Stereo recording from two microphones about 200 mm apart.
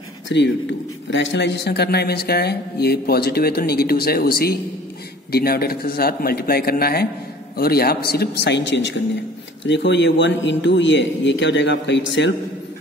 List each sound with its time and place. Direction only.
0.3 s a man's voice: 60° left (ahead or behind)